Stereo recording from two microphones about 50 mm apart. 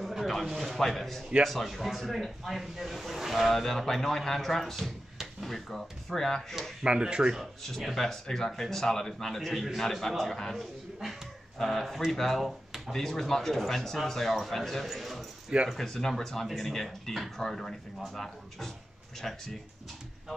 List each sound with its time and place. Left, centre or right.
0.0 s a sound: centre
0.5 s speech: centre
6.8 s speech: centre
7.6 s speech: centre